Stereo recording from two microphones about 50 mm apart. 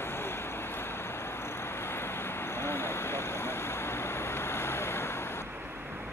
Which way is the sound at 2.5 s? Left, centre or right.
Left.